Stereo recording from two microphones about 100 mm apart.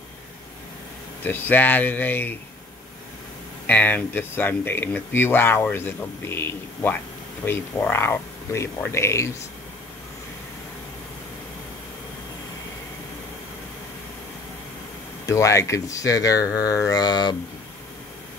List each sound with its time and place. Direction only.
1.2 s speech: 20° left (ahead or behind)
3.6 s speech: 15° left (ahead or behind)
15.2 s speech: 30° left (ahead or behind)